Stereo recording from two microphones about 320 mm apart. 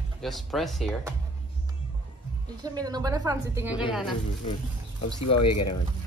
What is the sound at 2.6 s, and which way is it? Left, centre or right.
Speech, centre.